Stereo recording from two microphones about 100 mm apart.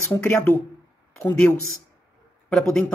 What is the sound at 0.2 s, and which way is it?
Speech, 20° left (ahead or behind).